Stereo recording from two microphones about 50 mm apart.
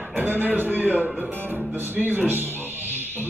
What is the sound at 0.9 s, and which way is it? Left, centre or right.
Speech, right.